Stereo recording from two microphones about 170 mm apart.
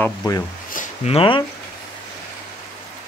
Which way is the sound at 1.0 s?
30° left (ahead or behind).